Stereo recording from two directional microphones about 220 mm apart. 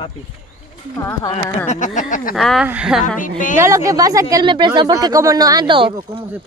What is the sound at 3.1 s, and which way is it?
Speech, 35° left (ahead or behind).